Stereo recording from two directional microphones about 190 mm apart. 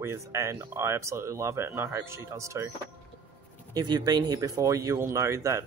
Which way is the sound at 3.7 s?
20° right (ahead or behind).